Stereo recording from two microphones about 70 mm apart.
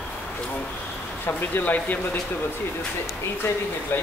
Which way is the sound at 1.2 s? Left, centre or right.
Left.